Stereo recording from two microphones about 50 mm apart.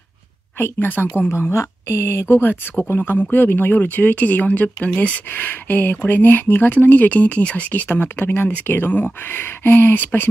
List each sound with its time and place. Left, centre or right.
0.6 s speech: left
1.3 s speech: left
5.3 s speech: left